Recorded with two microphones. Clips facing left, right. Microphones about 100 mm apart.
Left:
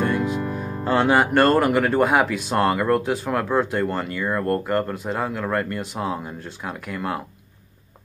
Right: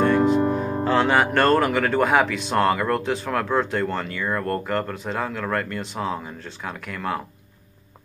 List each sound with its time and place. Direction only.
0.5 s music: 50° right (ahead or behind)
0.8 s speech: 10° left (ahead or behind)